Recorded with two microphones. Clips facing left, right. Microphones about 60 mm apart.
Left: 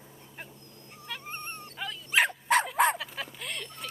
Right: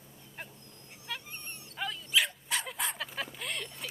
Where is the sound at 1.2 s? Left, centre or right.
Left.